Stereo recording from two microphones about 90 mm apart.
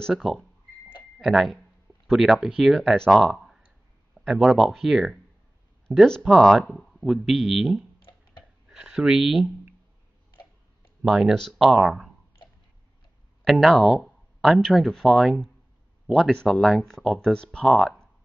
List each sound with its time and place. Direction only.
0.1 s speech: centre (ahead or behind)
6.0 s speech: 5° left (ahead or behind)
8.0 s a sound: 65° left (ahead or behind)
8.8 s speech: 5° right (ahead or behind)
11.1 s speech: 5° right (ahead or behind)
13.4 s speech: centre (ahead or behind)